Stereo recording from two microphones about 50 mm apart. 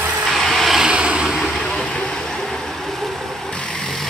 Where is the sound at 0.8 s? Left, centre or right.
Centre.